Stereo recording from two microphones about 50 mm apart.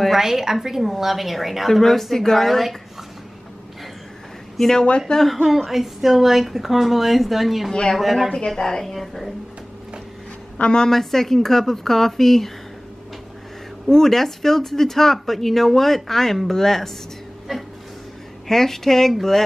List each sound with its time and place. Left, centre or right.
0.2 s a woman's voice: centre
4.6 s speech: centre
4.8 s speech: left
5.1 s a woman's voice: centre
7.7 s speech: centre
8.0 s a woman's voice: centre
8.5 s a woman's voice: centre
10.6 s speech: centre
13.8 s a woman's voice: centre